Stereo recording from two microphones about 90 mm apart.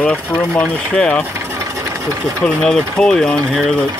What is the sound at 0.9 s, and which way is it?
Speech, 10° left (ahead or behind).